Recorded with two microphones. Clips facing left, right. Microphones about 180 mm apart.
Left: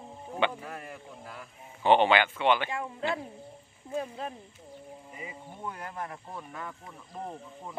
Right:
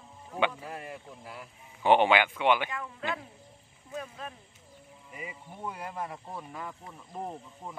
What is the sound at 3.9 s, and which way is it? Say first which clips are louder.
Speech: left 5 dB; 30° left (ahead or behind).